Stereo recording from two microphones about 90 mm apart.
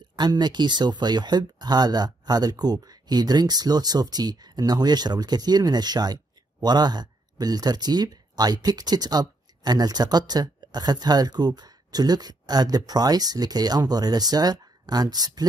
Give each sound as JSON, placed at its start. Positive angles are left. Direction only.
{"t": 0.1, "sound": "speech", "side_deg": -50}